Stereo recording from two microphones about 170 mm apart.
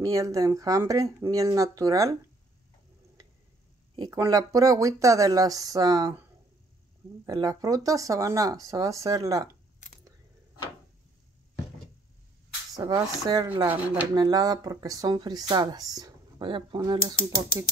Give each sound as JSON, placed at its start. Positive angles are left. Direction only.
{"t": 0.0, "sound": "speech", "side_deg": -20}
{"t": 4.1, "sound": "speech", "side_deg": -20}
{"t": 7.2, "sound": "speech", "side_deg": -25}
{"t": 12.7, "sound": "speech", "side_deg": -20}
{"t": 14.1, "sound": "speech", "side_deg": -20}